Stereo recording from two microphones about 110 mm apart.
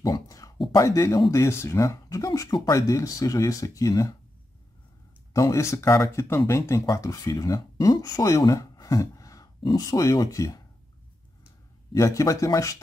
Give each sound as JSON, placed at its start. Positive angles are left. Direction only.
{"t": 0.0, "sound": "speech", "side_deg": 35}
{"t": 5.3, "sound": "speech", "side_deg": 30}
{"t": 11.9, "sound": "speech", "side_deg": 30}